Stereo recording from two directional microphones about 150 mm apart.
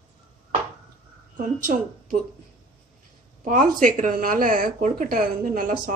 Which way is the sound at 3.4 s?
60° right (ahead or behind).